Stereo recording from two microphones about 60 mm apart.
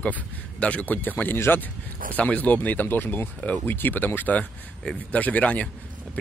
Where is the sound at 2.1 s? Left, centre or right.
Left.